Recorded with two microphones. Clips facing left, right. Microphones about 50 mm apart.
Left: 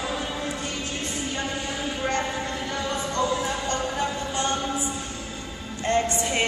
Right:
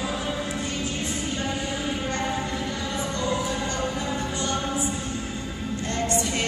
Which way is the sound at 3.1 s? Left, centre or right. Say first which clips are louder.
Left 2 dB; left.